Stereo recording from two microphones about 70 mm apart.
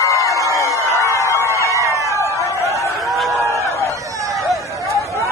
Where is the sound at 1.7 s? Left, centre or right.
Right.